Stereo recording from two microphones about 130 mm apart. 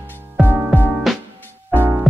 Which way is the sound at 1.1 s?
Centre (ahead or behind).